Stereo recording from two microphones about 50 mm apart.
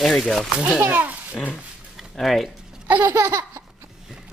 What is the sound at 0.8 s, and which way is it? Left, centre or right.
Speech, right.